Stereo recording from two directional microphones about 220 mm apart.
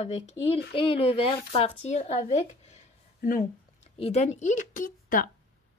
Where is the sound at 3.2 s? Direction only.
40° left (ahead or behind).